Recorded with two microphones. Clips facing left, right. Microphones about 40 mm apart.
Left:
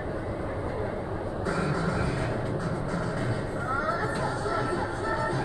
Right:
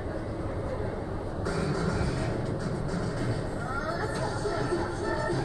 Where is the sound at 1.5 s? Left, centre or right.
Left.